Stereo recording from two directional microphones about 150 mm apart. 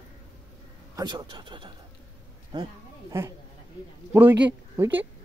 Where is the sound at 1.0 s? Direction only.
25° right (ahead or behind).